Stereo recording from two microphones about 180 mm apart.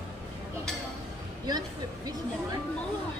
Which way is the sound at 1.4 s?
20° right (ahead or behind).